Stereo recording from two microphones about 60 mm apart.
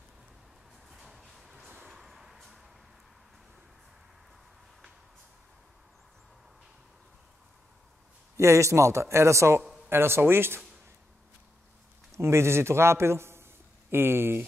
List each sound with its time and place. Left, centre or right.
0.8 s a sound: centre
1.9 s vehicle: centre
8.4 s speech: right
12.1 s a man's voice: right